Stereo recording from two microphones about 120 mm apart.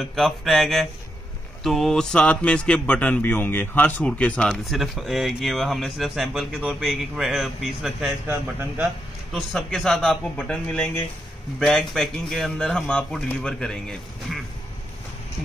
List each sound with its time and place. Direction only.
0.0 s speech: centre (ahead or behind)
8.3 s a man's voice: 15° right (ahead or behind)
9.3 s speech: centre (ahead or behind)